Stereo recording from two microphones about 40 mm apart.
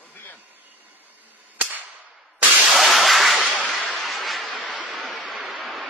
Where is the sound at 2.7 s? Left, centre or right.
Centre.